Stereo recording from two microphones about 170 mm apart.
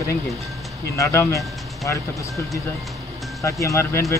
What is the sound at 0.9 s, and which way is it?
Speech, 15° left (ahead or behind).